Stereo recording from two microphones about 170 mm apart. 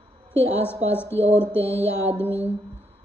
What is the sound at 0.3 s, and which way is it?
A woman's voice, 15° left (ahead or behind).